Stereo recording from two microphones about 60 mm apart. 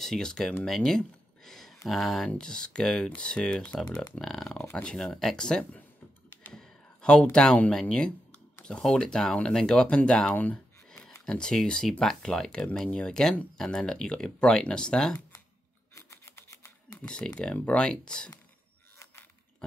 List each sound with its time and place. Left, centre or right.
0.0 s speech: centre
0.7 s a sound: centre
1.9 s speech: centre
6.5 s computer keyboard: centre
8.6 s speech: centre
15.9 s typewriter: left
17.0 s speech: centre